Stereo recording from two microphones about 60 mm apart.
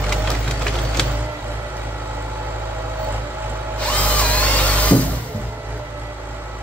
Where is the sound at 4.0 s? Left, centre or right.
Left.